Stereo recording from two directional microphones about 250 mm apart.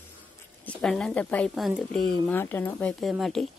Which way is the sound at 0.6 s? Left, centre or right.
Centre.